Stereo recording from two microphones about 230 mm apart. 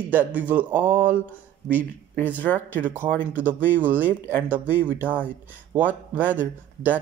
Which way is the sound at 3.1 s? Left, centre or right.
Centre.